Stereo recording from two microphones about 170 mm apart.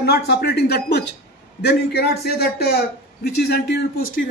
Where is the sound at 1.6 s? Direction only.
70° left (ahead or behind).